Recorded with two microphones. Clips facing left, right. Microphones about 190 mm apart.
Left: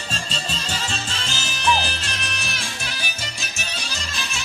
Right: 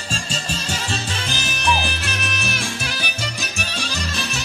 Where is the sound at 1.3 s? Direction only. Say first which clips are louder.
Right 4 dB; 15° right (ahead or behind).